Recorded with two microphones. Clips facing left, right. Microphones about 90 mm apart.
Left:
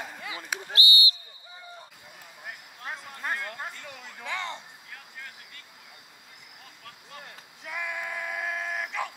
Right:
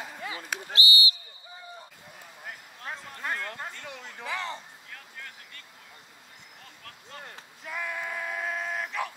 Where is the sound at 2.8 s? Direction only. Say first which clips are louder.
Left 1 dB; 10° left (ahead or behind).